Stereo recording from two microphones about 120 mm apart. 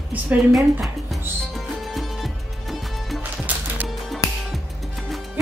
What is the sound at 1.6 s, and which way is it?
Music, centre (ahead or behind).